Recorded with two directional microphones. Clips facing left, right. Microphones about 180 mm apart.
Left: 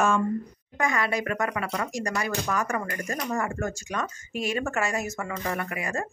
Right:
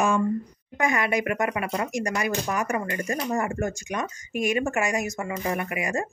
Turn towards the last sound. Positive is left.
turn(degrees=-15)  # may be behind; listen again after turning